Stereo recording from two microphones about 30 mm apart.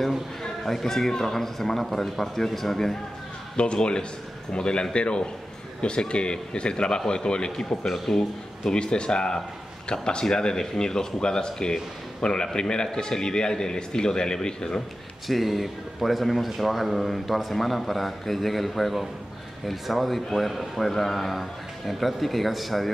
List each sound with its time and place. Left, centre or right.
0.4 s a man's voice: centre
3.5 s a man's voice: left
7.8 s a man's voice: centre
8.7 s a man's voice: left
15.2 s speech: centre